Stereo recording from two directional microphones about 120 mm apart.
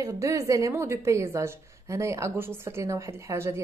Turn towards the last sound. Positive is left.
turn(degrees=-25)  # may be behind; listen again after turning